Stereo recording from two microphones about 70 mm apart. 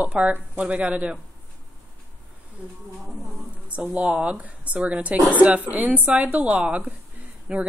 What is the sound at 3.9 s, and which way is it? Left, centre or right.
A woman's voice, centre.